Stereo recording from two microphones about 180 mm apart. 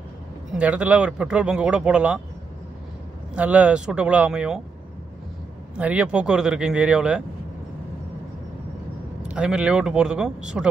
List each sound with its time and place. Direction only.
0.5 s speech: 5° right (ahead or behind)
3.3 s speech: 5° right (ahead or behind)
5.8 s speech: 5° right (ahead or behind)
9.3 s speech: 5° right (ahead or behind)